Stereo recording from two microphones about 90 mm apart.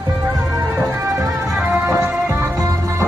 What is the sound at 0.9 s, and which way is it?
Music, 35° right (ahead or behind).